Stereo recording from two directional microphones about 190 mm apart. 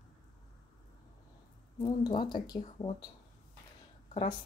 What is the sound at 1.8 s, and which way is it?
Speech, 25° left (ahead or behind).